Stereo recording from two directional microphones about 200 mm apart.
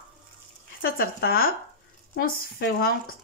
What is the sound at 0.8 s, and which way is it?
Speech, 50° left (ahead or behind).